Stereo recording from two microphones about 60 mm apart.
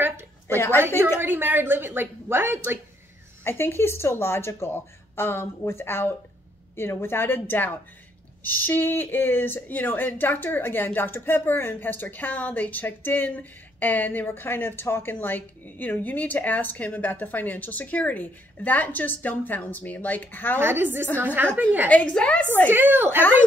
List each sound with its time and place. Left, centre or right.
0.7 s a woman's voice: right
3.4 s a woman's voice: left
20.5 s a woman's voice: right
21.8 s speech: centre
22.7 s a woman's voice: right